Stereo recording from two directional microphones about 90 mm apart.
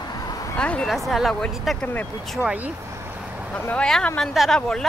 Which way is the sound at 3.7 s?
10° left (ahead or behind).